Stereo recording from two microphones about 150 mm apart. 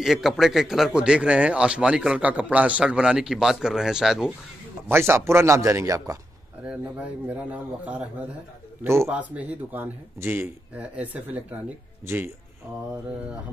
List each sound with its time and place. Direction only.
0.0 s speech: centre (ahead or behind)
4.8 s speech: 15° right (ahead or behind)
7.2 s speech: 10° right (ahead or behind)